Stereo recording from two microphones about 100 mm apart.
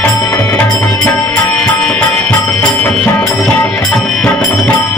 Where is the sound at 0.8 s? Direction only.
15° left (ahead or behind).